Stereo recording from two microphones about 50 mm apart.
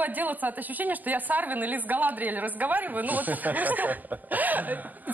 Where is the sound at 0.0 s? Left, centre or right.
Right.